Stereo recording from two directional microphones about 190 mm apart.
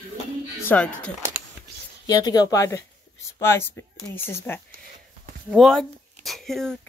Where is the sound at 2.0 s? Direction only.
20° left (ahead or behind).